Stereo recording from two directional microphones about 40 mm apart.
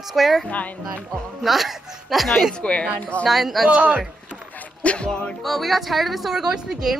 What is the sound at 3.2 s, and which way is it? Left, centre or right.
Speech, centre.